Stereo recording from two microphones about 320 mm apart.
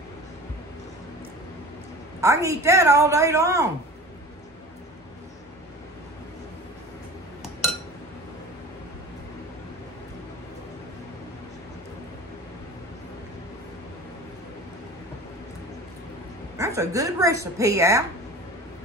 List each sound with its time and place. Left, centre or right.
2.1 s a woman's voice: centre
16.5 s a woman's voice: centre